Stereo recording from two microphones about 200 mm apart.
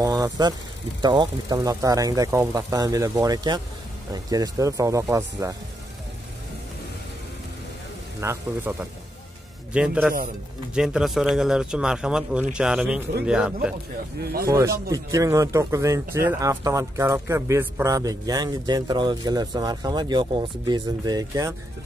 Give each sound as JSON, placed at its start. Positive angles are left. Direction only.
{"t": 0.0, "sound": "speech", "side_deg": -20}
{"t": 8.2, "sound": "speech", "side_deg": -10}
{"t": 14.5, "sound": "speech", "side_deg": -15}